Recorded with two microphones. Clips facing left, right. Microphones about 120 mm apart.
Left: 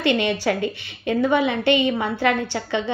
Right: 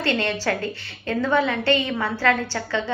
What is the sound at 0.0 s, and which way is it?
A woman's voice, 15° left (ahead or behind).